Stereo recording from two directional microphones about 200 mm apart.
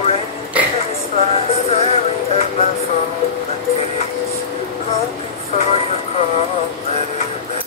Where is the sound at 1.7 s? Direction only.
30° left (ahead or behind).